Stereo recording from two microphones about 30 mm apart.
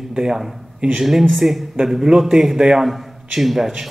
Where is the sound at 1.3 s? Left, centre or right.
Centre.